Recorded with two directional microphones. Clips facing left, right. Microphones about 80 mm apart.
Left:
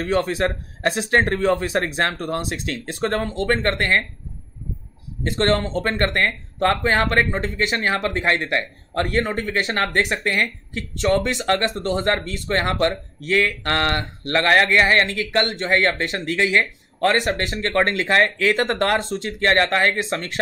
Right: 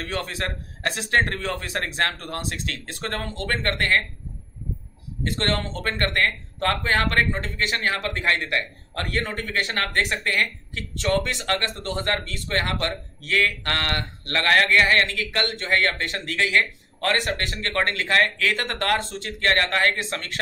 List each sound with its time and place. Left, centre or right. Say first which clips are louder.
0.0 s speech: left 8 dB; centre
5.2 s speech: left 6 dB; left